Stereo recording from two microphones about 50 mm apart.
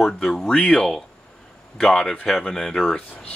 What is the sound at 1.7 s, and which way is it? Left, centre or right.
Speech, centre.